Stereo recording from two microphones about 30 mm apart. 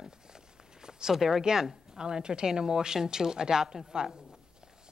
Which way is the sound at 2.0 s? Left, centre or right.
Right.